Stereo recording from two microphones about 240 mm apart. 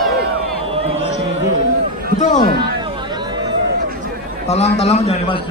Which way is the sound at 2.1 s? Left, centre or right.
Left.